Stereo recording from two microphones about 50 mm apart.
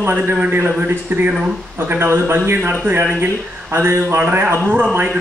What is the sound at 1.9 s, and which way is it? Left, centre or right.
Speech, right.